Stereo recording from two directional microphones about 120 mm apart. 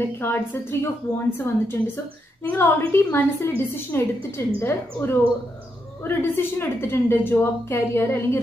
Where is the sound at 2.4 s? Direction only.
20° left (ahead or behind).